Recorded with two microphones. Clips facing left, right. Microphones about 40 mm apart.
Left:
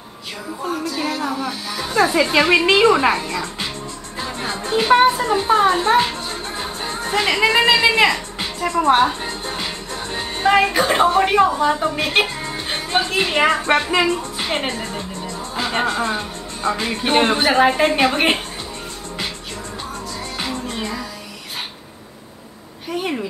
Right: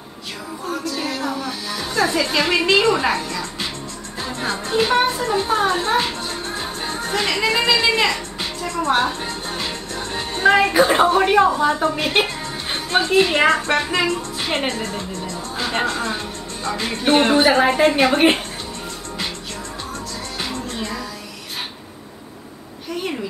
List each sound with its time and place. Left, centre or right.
0.7 s music: centre
2.0 s a woman's voice: centre
8.0 s music: centre
10.7 s a woman's voice: centre
20.3 s music: centre